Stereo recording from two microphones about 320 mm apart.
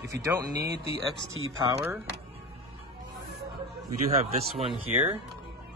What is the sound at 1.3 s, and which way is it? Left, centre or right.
Speech, right.